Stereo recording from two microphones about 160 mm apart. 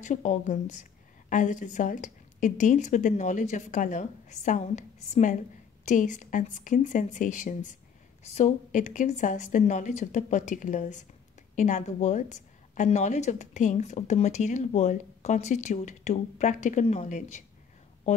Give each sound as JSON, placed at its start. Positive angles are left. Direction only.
{"t": 0.0, "sound": "a woman's voice", "side_deg": 50}